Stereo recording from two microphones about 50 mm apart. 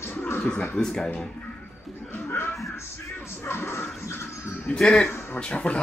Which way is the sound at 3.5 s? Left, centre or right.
Left.